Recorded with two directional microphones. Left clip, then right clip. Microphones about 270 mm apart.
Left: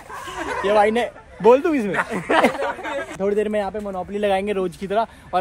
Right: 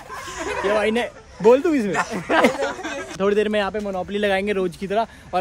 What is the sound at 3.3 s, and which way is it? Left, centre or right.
Speech, centre.